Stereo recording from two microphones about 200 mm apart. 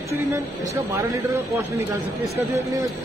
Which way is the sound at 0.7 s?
15° right (ahead or behind).